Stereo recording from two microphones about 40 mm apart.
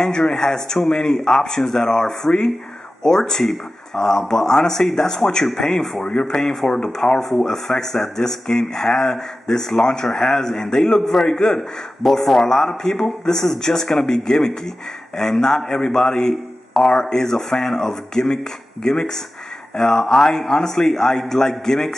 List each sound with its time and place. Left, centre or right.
0.0 s speech: centre
6.0 s speech: left
6.4 s speech: centre
6.8 s speech: centre